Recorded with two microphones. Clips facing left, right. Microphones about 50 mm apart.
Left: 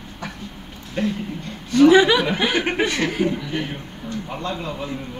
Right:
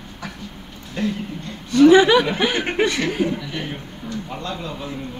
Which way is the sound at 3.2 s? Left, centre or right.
Centre.